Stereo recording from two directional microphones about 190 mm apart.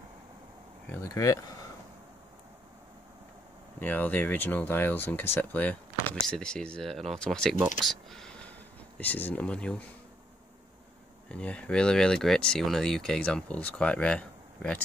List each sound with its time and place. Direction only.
0.8 s speech: 15° left (ahead or behind)
3.8 s speech: 10° left (ahead or behind)
11.2 s speech: 5° left (ahead or behind)